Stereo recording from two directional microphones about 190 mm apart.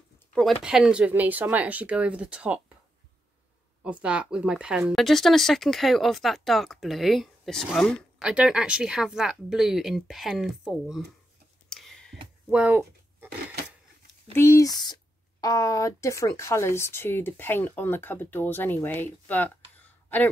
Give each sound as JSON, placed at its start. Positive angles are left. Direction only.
{"t": 0.3, "sound": "speech", "side_deg": 0}
{"t": 3.8, "sound": "speech", "side_deg": -5}
{"t": 11.7, "sound": "a sound", "side_deg": 0}
{"t": 14.3, "sound": "speech", "side_deg": 15}